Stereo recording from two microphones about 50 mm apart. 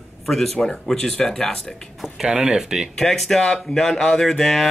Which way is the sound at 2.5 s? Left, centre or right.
Centre.